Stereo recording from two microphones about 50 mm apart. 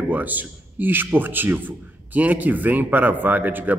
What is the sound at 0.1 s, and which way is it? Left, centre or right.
A man's voice, right.